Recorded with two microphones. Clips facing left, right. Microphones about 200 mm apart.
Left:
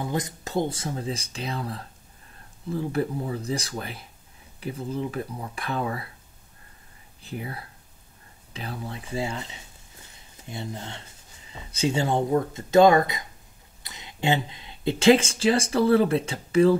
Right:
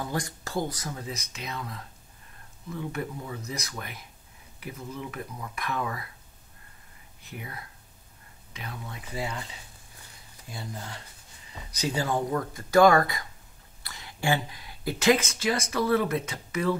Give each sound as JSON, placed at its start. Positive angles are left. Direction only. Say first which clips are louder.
{"t": 0.0, "sound": "speech", "louder": "left 3 dB", "side_deg": 20}
{"t": 7.2, "sound": "speech", "louder": "left 6 dB", "side_deg": 30}